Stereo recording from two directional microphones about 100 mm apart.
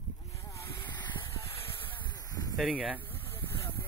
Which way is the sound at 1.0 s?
50° left (ahead or behind).